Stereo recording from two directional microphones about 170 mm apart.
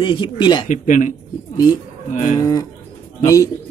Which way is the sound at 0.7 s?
45° left (ahead or behind).